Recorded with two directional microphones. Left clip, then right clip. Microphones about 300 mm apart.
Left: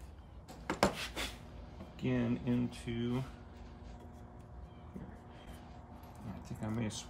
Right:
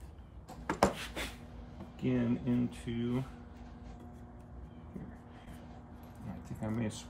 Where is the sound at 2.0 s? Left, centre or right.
Centre.